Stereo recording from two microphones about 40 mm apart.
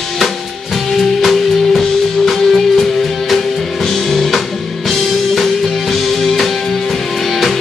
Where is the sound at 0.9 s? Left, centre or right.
Centre.